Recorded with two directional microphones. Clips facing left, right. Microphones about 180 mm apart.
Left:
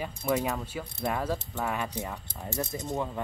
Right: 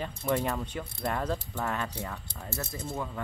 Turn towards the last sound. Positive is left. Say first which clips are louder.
# left 3 dB
turn(degrees=20)  # may be behind; listen again after turning